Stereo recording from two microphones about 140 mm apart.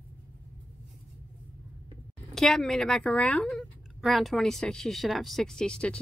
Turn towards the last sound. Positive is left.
turn(degrees=5)  # may be behind; listen again after turning